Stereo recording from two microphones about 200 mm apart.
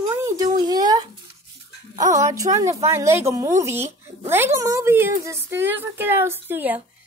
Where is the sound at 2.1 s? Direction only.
15° right (ahead or behind).